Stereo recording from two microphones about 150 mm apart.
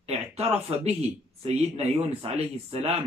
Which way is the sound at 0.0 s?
45° right (ahead or behind).